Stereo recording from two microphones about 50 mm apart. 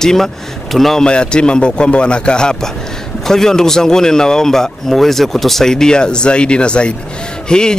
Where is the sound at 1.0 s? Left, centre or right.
Centre.